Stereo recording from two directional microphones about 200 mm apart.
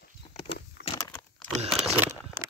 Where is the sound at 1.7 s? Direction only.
5° right (ahead or behind).